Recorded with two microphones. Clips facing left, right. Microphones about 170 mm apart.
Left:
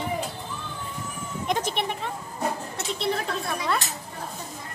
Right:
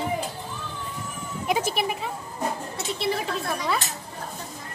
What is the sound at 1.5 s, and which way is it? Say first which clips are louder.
A woman's voice: right 2 dB; 5° right (ahead or behind).